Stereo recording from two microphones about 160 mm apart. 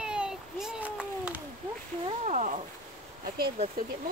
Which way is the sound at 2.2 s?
45° right (ahead or behind).